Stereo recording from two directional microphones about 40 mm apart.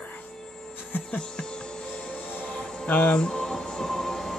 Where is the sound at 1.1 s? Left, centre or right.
Left.